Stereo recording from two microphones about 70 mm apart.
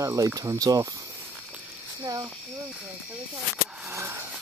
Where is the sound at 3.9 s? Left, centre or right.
Right.